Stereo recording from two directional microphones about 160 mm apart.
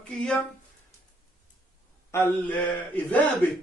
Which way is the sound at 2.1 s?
15° left (ahead or behind).